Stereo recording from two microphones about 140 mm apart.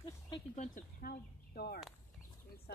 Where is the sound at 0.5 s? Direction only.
65° left (ahead or behind); by 1.6 s 90° left.